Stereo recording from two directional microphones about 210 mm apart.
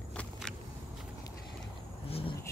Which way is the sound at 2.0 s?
25° left (ahead or behind).